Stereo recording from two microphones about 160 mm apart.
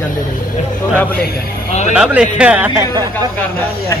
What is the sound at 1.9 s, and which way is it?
Speech, 5° right (ahead or behind).